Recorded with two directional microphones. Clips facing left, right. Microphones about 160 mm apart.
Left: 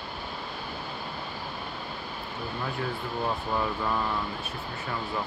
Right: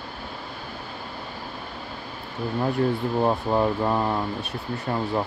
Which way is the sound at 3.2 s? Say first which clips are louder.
Right 7 dB; 40° right (ahead or behind).